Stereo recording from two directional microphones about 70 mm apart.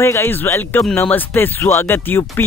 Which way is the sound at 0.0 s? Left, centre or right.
Left.